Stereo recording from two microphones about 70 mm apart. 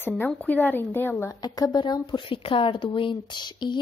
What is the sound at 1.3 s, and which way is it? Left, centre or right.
Speech, left.